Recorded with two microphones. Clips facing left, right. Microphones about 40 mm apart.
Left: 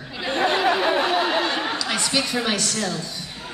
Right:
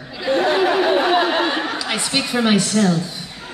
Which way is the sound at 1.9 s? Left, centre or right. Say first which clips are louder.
Right 4 dB; centre.